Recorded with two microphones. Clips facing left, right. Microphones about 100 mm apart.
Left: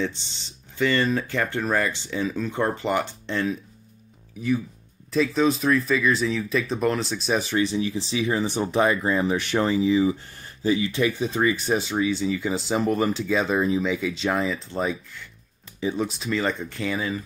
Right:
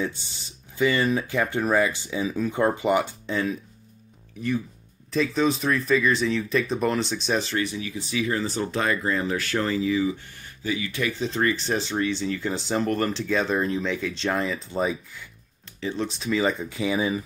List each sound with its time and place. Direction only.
0.0 s speech: 10° right (ahead or behind)
5.1 s speech: centre (ahead or behind)
7.6 s speech: 25° left (ahead or behind); by 15.2 s 5° right (ahead or behind)
15.8 s speech: 15° left (ahead or behind)
16.1 s speech: centre (ahead or behind)